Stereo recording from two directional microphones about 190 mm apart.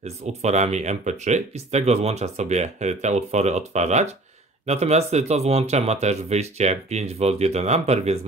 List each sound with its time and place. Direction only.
0.0 s speech: 35° right (ahead or behind)